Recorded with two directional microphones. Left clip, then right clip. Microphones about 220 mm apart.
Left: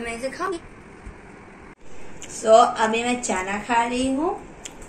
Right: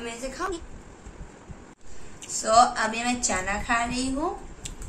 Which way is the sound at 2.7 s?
40° right (ahead or behind).